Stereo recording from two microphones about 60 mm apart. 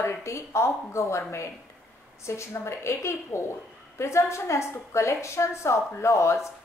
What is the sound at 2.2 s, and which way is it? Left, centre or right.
A woman's voice, left.